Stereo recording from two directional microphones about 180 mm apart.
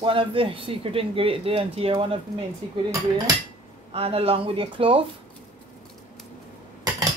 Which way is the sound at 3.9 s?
35° right (ahead or behind).